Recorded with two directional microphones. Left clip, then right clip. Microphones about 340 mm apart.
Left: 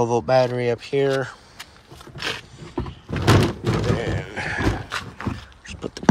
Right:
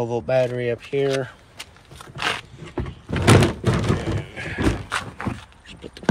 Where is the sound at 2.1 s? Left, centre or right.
Centre.